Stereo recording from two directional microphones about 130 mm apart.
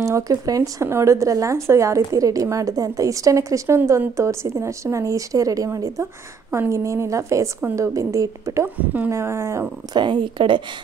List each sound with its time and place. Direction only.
0.0 s speech: 25° right (ahead or behind)
9.9 s a woman's voice: 35° right (ahead or behind)